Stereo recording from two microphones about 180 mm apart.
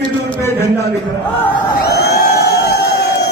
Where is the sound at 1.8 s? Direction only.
60° left (ahead or behind).